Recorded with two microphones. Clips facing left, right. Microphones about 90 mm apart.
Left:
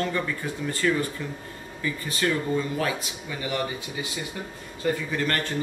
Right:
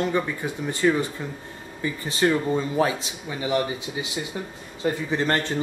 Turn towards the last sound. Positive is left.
turn(degrees=-25)  # may be behind; listen again after turning